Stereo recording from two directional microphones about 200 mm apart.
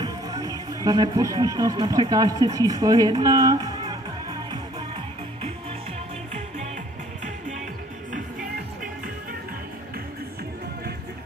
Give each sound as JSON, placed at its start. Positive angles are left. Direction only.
{"t": 0.0, "sound": "speech", "side_deg": -20}
{"t": 2.4, "sound": "music", "side_deg": -20}